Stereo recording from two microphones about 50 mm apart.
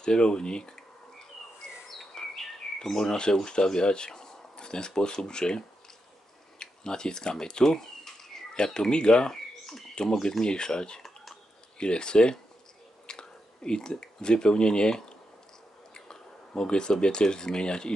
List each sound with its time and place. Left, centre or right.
0.0 s speech: centre
2.0 s speech: centre
6.6 s speech: centre
10.4 s speech: centre